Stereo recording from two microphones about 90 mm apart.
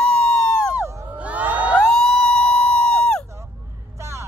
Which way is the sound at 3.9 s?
30° right (ahead or behind).